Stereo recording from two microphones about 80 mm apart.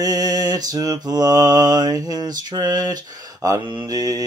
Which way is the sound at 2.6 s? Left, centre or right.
Right.